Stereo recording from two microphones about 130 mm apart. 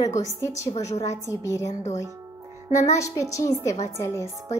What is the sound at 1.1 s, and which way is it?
Speech, 25° left (ahead or behind).